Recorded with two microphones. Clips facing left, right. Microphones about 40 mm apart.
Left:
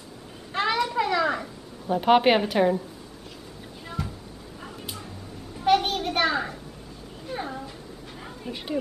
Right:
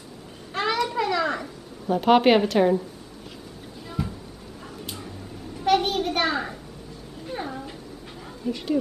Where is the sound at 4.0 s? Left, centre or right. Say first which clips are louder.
Right 4 dB; centre.